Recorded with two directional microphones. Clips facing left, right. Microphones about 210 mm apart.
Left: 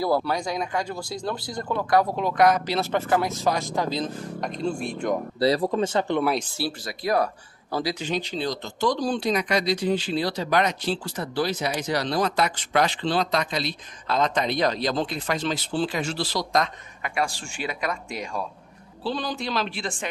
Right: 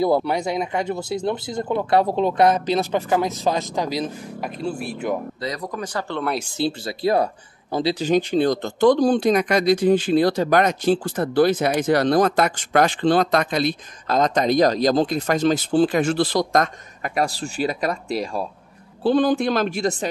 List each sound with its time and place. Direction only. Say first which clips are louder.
0.0 s speech: right 4 dB; 20° right (ahead or behind); by 5.1 s 5° right (ahead or behind)
5.4 s speech: left 7 dB; 30° left (ahead or behind)
6.4 s speech: right 6 dB; 20° right (ahead or behind)
8.0 s speech: right 9 dB; 50° right (ahead or behind)
19.0 s speech: right 11 dB; 50° right (ahead or behind)